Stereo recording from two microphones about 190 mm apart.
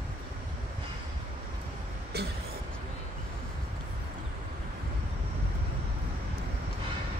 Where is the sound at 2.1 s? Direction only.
60° right (ahead or behind).